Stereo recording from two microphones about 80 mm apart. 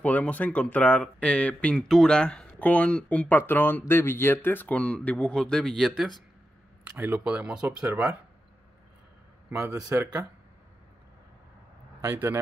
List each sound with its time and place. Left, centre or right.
0.0 s speech: centre
6.9 s speech: right
7.2 s speech: centre
9.5 s speech: right
12.0 s speech: right